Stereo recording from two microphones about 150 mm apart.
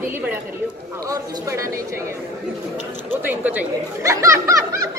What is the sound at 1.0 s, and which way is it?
Speech, 20° right (ahead or behind).